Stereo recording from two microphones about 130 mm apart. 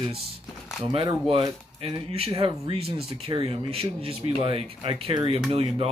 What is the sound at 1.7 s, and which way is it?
Speech, 50° right (ahead or behind).